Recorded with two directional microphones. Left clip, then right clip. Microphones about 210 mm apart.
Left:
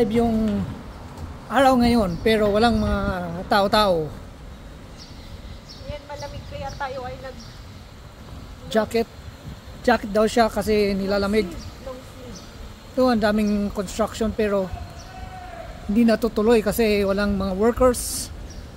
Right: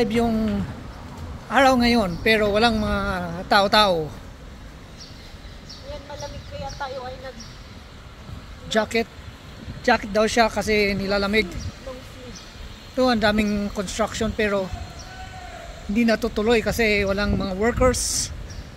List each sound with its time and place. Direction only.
0.0 s speech: 5° left (ahead or behind)
1.5 s speech: 15° left (ahead or behind)
6.8 s a sound: 5° left (ahead or behind)
8.6 s speech: 15° left (ahead or behind)
12.9 s speech: 15° left (ahead or behind)
15.9 s speech: 20° left (ahead or behind)